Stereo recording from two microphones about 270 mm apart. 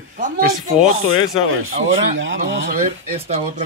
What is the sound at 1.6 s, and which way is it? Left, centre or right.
Speech, right.